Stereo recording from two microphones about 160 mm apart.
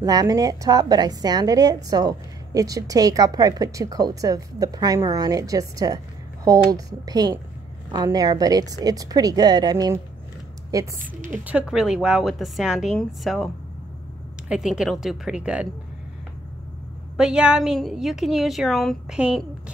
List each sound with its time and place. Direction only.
0.0 s a woman's voice: 25° right (ahead or behind)
11.4 s a woman's voice: 5° right (ahead or behind)
14.5 s a woman's voice: 5° right (ahead or behind)
17.2 s a woman's voice: 5° right (ahead or behind)